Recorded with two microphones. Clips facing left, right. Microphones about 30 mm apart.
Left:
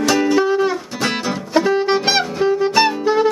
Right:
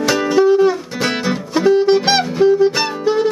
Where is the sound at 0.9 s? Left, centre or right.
Centre.